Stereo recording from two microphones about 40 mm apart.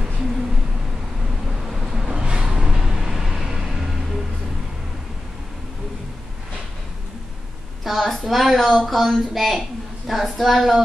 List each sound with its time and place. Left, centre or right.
1.7 s vehicle: centre
2.1 s a sound: right
2.4 s vehicle: centre
7.8 s speech: centre